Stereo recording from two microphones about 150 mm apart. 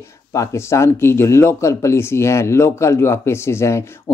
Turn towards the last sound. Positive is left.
turn(degrees=20)  # may be behind; listen again after turning